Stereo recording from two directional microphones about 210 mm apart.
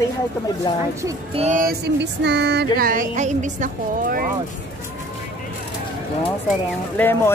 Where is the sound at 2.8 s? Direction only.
40° right (ahead or behind).